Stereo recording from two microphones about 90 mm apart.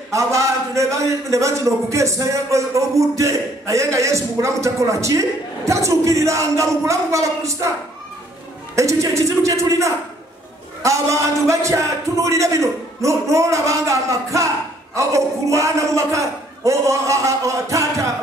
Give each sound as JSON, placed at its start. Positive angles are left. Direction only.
{"t": 0.1, "sound": "a man's voice", "side_deg": -35}
{"t": 8.7, "sound": "a man's voice", "side_deg": -35}